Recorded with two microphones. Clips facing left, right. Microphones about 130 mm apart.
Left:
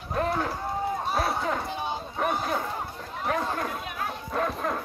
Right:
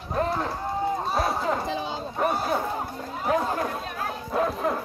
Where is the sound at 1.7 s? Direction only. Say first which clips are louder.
Right 2 dB; 90° right.